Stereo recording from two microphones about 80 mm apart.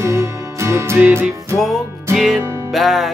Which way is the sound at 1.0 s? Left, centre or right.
Right.